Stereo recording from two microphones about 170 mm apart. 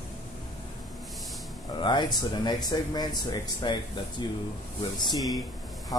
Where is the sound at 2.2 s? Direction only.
25° left (ahead or behind).